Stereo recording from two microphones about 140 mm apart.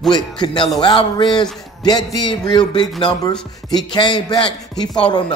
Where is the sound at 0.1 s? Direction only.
35° left (ahead or behind).